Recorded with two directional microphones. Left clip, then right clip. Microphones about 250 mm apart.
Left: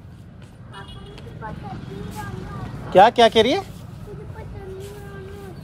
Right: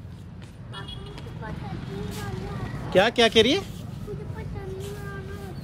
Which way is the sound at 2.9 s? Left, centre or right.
Centre.